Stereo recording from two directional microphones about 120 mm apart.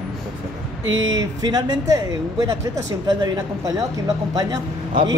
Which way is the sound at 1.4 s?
35° right (ahead or behind).